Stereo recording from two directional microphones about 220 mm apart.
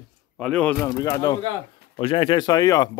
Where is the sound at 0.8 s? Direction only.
15° left (ahead or behind).